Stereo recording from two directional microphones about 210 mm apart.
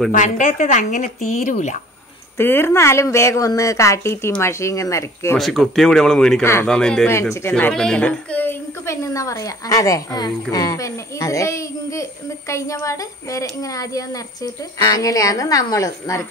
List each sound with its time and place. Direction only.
0.1 s speech: 40° left (ahead or behind)
2.3 s a child's voice: 10° left (ahead or behind)
5.4 s a child's voice: centre (ahead or behind)